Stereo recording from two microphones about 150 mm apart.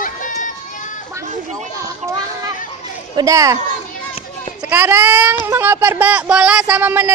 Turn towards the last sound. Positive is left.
turn(degrees=-15)  # may be behind; listen again after turning